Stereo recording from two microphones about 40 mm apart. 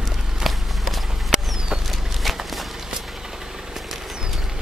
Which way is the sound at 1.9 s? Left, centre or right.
Centre.